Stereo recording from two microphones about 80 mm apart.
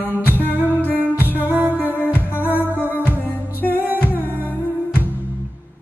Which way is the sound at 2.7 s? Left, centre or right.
Left.